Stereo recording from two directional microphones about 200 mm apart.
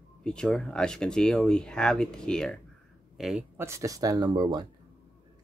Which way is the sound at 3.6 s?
15° right (ahead or behind).